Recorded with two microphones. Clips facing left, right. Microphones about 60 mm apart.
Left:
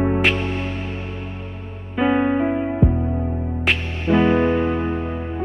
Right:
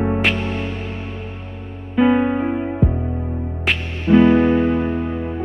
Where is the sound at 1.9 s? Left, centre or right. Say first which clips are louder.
Right 2 dB; centre.